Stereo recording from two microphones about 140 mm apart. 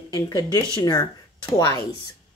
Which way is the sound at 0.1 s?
25° left (ahead or behind).